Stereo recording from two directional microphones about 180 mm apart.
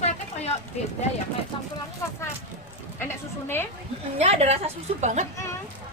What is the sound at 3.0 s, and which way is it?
Speech, 15° left (ahead or behind).